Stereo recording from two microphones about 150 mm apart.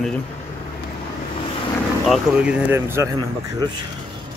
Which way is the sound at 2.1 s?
5° right (ahead or behind).